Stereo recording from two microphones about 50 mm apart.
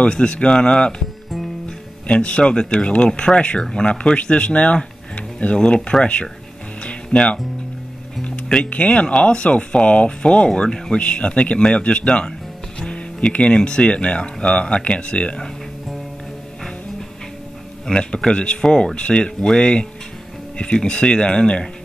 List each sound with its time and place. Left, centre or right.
0.0 s speech: centre
2.0 s speech: left
6.8 s music: left
8.6 s speech: left
17.9 s speech: left